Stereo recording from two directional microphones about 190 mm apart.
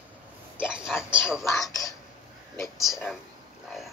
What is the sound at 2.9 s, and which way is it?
Speech, centre (ahead or behind).